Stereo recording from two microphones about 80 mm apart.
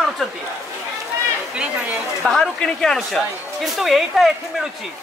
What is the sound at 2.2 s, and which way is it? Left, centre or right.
A man's voice, centre.